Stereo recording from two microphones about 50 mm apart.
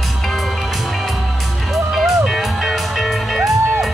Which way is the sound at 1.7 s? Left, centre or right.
Centre.